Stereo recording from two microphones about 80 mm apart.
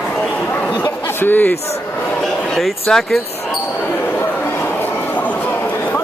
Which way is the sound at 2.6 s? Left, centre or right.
Centre.